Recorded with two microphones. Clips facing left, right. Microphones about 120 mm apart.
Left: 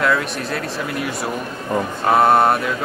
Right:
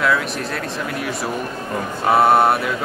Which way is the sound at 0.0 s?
Centre (ahead or behind).